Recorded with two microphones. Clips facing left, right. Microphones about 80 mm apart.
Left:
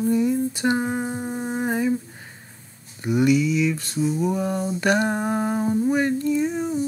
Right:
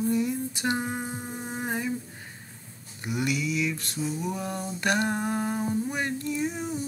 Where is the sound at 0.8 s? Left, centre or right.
Left.